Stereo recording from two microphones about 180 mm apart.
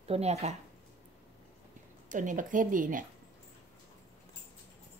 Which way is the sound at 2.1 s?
45° right (ahead or behind).